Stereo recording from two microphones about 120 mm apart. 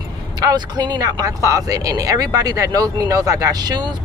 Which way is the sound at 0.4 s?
35° right (ahead or behind).